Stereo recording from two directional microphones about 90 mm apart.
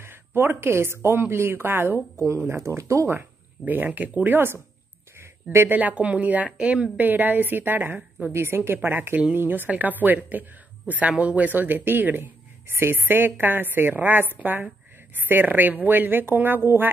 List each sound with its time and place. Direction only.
0.0 s speech: 25° right (ahead or behind)
5.8 s speech: 15° right (ahead or behind)